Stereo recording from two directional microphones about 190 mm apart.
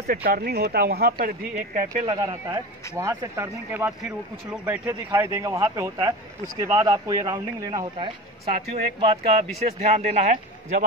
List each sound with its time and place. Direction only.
0.0 s speech: 50° right (ahead or behind)
1.8 s a man's voice: 20° right (ahead or behind); by 10.3 s 40° right (ahead or behind)